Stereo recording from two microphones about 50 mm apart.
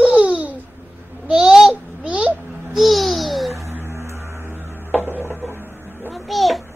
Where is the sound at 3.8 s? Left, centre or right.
Right.